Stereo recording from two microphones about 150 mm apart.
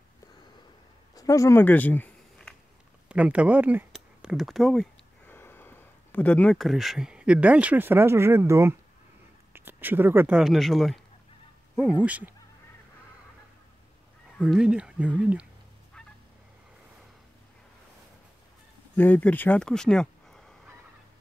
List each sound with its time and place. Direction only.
1.1 s a sound: 20° left (ahead or behind)
3.1 s speech: 10° right (ahead or behind)
5.3 s speech: 15° left (ahead or behind)
12.0 s speech: 10° right (ahead or behind)
14.4 s speech: 5° right (ahead or behind)
18.9 s speech: 10° left (ahead or behind)